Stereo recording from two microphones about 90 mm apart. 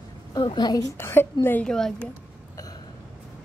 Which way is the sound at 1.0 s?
25° left (ahead or behind).